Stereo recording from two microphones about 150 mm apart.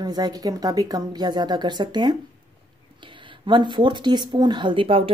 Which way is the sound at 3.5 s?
30° right (ahead or behind).